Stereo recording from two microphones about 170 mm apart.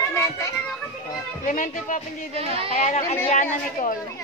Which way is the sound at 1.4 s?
50° left (ahead or behind).